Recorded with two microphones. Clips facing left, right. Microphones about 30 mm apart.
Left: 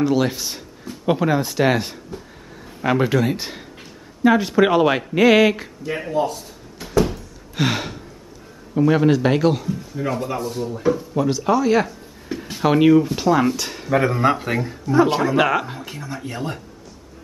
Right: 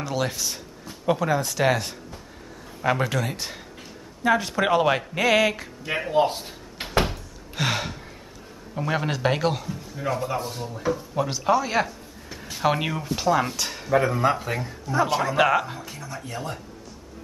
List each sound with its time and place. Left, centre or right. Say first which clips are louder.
0.0 s speech: left 8 dB; centre
6.1 s drawer open or close: right 2 dB; right
7.5 s gasp: left 4 dB; centre
8.7 s speech: left 10 dB; centre
10.4 s speech: left 7 dB; centre
10.7 s speech: left 6 dB; centre
11.1 s speech: left 1 dB; centre
13.9 s speech: left 3 dB; left
15.8 s speech: left 5 dB; left